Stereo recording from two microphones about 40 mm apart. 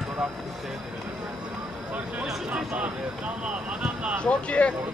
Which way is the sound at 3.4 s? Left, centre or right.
Right.